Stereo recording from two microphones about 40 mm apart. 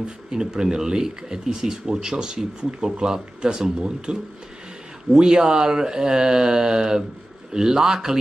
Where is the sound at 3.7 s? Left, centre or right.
Right.